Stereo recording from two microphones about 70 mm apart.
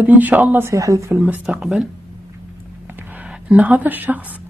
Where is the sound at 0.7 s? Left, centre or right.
Right.